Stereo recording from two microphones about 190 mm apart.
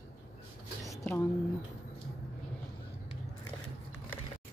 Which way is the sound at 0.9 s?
10° left (ahead or behind).